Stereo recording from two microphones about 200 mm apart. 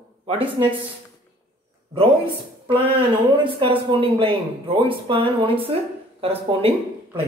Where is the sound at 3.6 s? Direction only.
25° right (ahead or behind).